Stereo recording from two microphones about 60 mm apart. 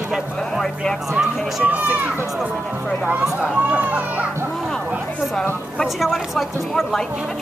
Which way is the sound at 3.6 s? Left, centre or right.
Right.